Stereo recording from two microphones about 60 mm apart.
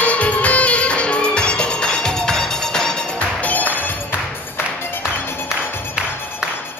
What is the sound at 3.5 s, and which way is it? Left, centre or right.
Music, left.